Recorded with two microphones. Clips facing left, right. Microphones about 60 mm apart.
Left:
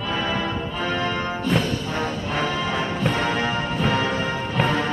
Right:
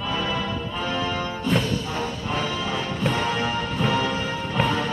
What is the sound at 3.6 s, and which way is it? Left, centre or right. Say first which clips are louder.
Music: left 1 dB; centre.